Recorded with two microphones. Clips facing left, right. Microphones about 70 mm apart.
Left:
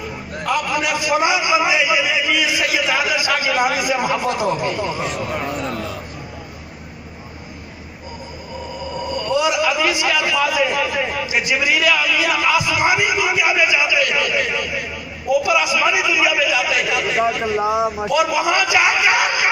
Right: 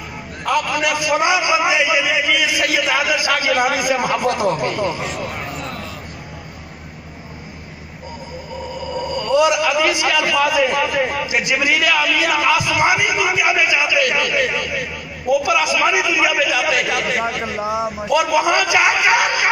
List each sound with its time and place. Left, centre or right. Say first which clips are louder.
0.5 s a man's voice: right 2 dB; right
0.8 s a sound: even; right
3.7 s a man's voice: right 1 dB; right
4.9 s speech: left 1 dB; centre
5.2 s a man's voice: left 3 dB; left
5.6 s a sound: left 4 dB; left
9.1 s a man's voice: right 3 dB; right
17.6 s a man's voice: left 3 dB; left
18.1 s a man's voice: right 3 dB; right